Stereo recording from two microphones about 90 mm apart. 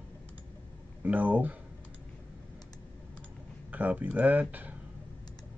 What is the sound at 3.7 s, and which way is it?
Speech, 20° right (ahead or behind).